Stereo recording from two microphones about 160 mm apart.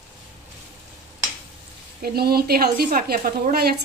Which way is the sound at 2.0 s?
75° right (ahead or behind).